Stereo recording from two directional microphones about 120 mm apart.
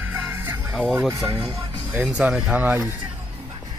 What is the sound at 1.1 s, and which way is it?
Speech, 25° right (ahead or behind).